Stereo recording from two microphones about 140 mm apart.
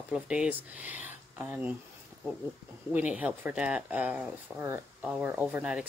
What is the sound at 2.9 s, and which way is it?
Speech, 10° right (ahead or behind).